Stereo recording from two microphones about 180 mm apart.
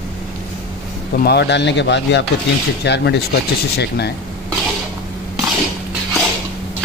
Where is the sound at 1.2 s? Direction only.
65° left (ahead or behind).